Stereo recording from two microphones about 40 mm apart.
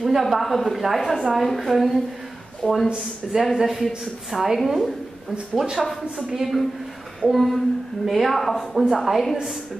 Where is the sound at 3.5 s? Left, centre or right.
Centre.